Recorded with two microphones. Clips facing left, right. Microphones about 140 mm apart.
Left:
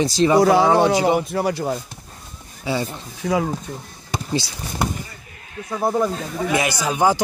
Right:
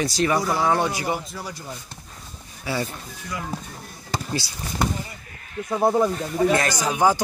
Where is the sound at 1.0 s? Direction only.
65° left (ahead or behind).